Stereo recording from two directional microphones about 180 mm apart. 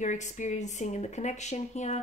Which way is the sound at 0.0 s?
45° left (ahead or behind).